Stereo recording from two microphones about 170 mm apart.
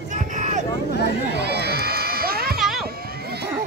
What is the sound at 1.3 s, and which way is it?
Crowd, 75° right (ahead or behind).